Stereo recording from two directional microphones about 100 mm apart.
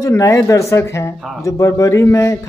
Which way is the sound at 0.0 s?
30° left (ahead or behind).